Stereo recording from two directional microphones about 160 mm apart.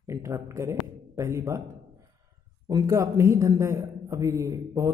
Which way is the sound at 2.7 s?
20° right (ahead or behind).